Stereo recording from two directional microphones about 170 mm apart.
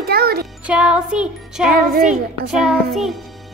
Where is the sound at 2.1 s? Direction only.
5° right (ahead or behind).